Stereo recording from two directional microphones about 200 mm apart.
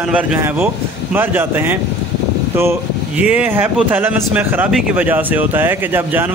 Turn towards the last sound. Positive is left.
turn(degrees=-10)  # may be behind; listen again after turning